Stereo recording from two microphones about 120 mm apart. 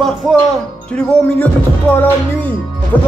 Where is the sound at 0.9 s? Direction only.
10° left (ahead or behind).